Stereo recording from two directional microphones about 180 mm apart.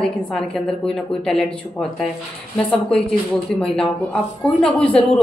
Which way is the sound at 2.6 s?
5° left (ahead or behind).